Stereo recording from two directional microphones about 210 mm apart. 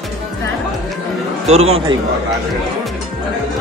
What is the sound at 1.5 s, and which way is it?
Speech, 30° right (ahead or behind).